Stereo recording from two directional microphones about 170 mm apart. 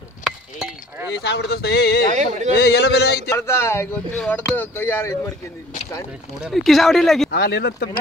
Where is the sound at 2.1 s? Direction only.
45° right (ahead or behind).